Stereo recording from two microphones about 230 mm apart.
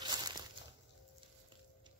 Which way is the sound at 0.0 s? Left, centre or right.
Centre.